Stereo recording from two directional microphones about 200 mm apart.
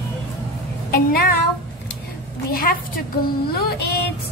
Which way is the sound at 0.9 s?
50° left (ahead or behind).